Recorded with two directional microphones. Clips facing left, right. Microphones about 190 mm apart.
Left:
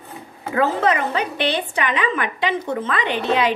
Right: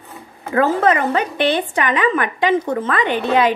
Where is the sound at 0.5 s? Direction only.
50° right (ahead or behind).